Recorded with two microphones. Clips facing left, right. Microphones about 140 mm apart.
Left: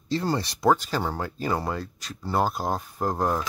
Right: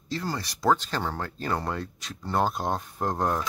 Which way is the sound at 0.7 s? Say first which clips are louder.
Left 2 dB; 10° left (ahead or behind).